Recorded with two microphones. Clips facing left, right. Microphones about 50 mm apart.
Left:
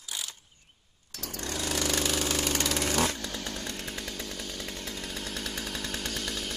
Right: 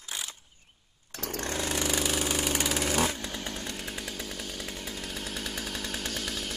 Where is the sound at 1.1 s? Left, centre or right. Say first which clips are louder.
Right 3 dB; right.